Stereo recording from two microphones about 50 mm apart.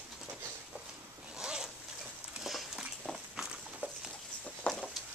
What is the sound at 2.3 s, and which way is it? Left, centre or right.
Dog, centre.